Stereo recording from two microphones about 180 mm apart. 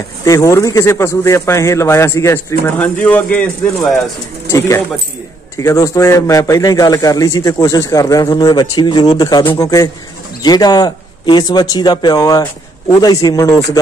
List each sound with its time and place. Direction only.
0.2 s a man's voice: 15° left (ahead or behind)
4.5 s a man's voice: 15° left (ahead or behind)